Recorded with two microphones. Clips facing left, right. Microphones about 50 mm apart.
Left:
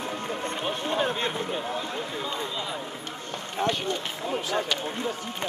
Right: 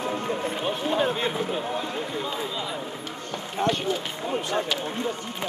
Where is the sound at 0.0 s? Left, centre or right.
Right.